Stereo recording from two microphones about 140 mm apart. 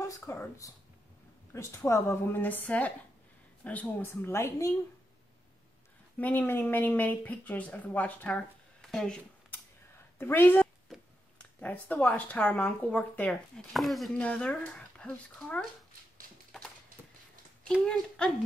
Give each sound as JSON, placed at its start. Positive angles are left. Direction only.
{"t": 0.0, "sound": "speech", "side_deg": 20}
{"t": 6.1, "sound": "speech", "side_deg": 15}
{"t": 8.9, "sound": "a sound", "side_deg": 5}
{"t": 10.1, "sound": "a woman's voice", "side_deg": 15}
{"t": 17.8, "sound": "speech", "side_deg": 5}